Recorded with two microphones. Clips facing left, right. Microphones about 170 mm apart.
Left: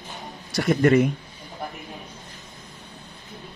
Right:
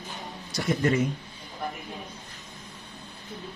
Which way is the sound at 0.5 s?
65° left (ahead or behind).